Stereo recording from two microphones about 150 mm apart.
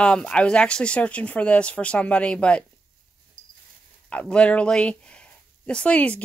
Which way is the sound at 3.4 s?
60° right (ahead or behind).